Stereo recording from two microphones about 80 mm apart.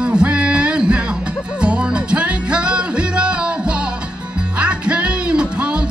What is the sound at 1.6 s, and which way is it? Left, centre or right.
Music, centre.